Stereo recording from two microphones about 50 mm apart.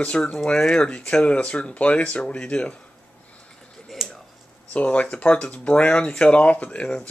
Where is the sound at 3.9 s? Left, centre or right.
Centre.